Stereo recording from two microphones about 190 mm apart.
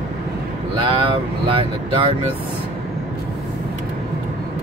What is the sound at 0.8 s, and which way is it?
Speech, 25° right (ahead or behind).